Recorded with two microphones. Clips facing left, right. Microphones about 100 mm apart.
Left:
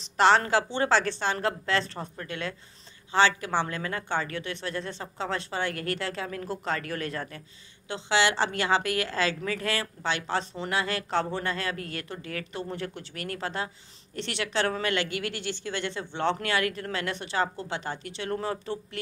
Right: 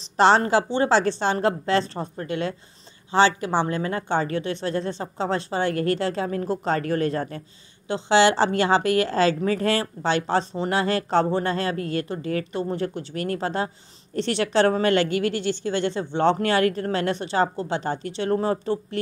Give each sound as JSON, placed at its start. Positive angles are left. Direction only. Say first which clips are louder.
{"t": 0.2, "sound": "a woman's voice", "louder": "right 4 dB", "side_deg": -30}